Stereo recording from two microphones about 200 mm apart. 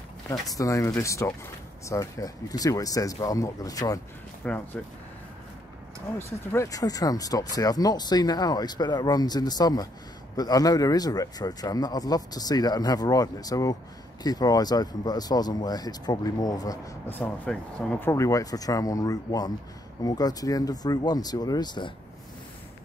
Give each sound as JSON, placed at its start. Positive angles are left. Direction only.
{"t": 0.3, "sound": "speech", "side_deg": 15}
{"t": 4.4, "sound": "speech", "side_deg": 5}
{"t": 6.1, "sound": "speech", "side_deg": 15}
{"t": 17.2, "sound": "speech", "side_deg": 5}